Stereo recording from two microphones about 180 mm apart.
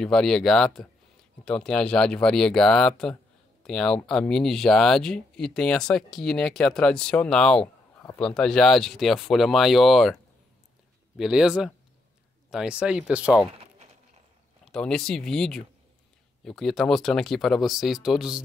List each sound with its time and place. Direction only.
0.0 s speech: 5° left (ahead or behind)
14.6 s speech: 5° left (ahead or behind)